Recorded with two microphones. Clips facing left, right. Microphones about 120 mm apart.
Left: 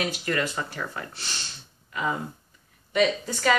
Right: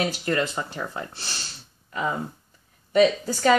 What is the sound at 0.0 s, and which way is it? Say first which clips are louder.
Speech: right 3 dB; 30° right (ahead or behind).